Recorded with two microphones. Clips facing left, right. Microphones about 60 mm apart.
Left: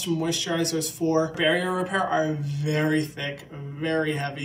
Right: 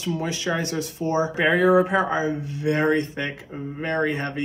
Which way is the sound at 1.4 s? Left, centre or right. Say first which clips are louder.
Right 6 dB; right.